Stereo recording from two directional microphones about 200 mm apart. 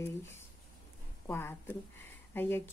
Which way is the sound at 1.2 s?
10° left (ahead or behind).